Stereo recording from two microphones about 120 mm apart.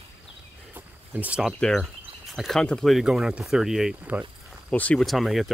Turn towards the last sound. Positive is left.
turn(degrees=0)  # may be behind; listen again after turning